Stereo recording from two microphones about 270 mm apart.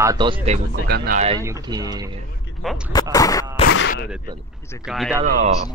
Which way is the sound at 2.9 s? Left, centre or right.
Centre.